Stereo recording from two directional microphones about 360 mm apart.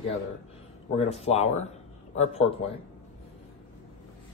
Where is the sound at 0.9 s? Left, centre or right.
Centre.